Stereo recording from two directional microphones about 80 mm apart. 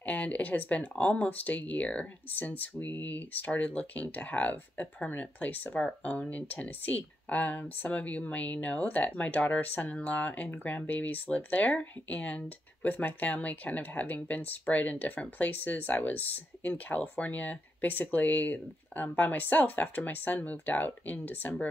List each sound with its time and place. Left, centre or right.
0.0 s speech: centre